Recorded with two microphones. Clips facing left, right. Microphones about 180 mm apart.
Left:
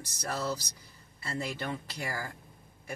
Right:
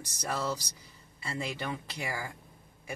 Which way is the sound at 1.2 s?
20° right (ahead or behind).